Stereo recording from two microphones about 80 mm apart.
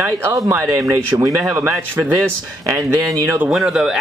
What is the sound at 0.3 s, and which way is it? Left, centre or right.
Speech, right.